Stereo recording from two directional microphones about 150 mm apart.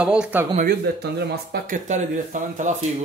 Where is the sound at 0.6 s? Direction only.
90° right.